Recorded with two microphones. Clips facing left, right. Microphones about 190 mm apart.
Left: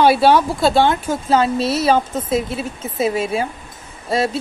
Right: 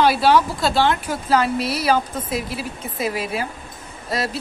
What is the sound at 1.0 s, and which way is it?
Speech, 25° left (ahead or behind).